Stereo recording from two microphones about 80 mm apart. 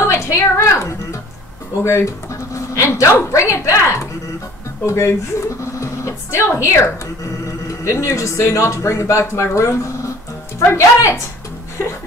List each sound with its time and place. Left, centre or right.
0.0 s music: left
1.8 s a woman's voice: left